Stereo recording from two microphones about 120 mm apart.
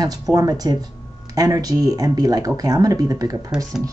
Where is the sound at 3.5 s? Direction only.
5° right (ahead or behind).